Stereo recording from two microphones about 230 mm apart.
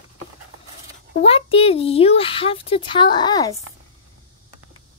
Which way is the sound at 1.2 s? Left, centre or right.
Left.